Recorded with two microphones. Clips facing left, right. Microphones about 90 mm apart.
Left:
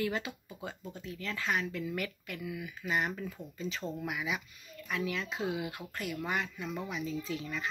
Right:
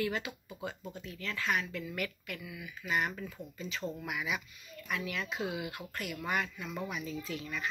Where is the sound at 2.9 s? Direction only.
30° left (ahead or behind).